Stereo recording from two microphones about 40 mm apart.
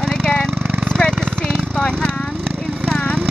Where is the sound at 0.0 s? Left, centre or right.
Centre.